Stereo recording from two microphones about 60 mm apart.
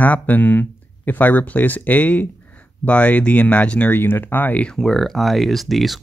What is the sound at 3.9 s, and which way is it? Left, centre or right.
Speech, left.